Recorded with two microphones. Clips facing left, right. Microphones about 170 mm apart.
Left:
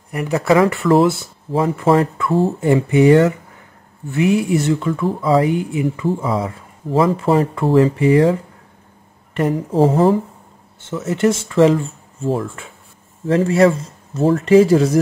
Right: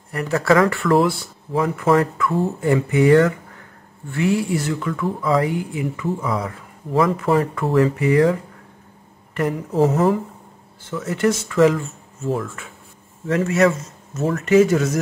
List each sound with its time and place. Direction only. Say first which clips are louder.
0.1 s speech: left 2 dB; 15° left (ahead or behind); by 15.0 s 30° left (ahead or behind)